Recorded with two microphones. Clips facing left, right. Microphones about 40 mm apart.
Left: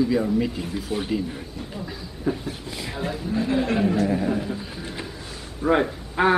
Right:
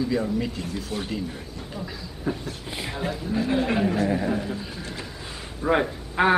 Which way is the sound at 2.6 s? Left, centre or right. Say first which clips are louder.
Even; right.